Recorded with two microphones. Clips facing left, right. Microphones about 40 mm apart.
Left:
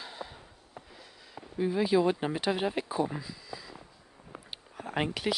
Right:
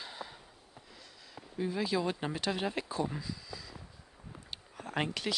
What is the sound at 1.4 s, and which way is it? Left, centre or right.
Speech, centre.